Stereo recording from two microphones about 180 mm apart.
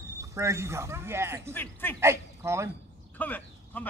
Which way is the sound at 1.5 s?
10° left (ahead or behind).